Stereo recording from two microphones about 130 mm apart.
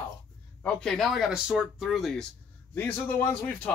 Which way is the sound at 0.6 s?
5° left (ahead or behind).